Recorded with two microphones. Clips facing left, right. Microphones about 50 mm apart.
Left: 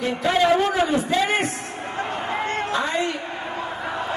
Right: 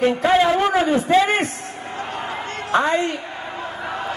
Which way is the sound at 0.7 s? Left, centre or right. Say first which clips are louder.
Right 3 dB; right.